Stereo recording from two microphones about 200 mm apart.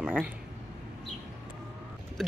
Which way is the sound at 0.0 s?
5° right (ahead or behind).